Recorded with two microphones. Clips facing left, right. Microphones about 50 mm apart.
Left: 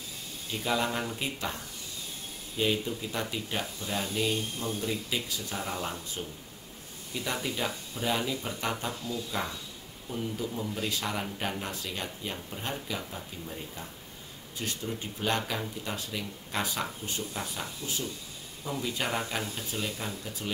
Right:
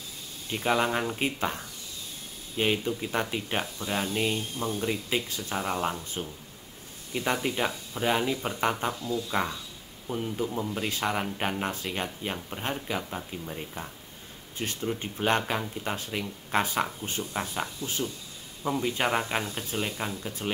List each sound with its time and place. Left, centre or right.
0.5 s speech: right
6.2 s speech: right
7.4 s speech: right
14.6 s speech: right